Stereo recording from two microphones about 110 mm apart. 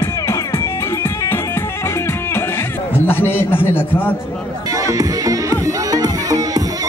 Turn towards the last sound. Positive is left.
turn(degrees=-35)  # may be behind; listen again after turning